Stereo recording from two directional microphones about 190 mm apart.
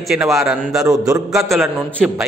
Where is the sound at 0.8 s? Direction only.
20° right (ahead or behind).